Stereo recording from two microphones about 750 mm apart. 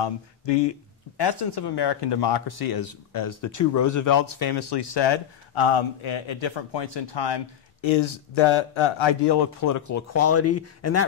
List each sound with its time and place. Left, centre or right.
0.0 s speech: left; by 11.1 s centre